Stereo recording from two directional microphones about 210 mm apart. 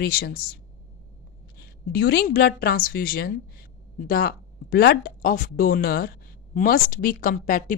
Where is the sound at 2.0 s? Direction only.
45° left (ahead or behind).